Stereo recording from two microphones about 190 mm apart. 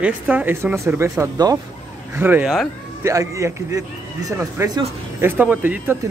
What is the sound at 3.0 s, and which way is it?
A man's voice, 15° right (ahead or behind).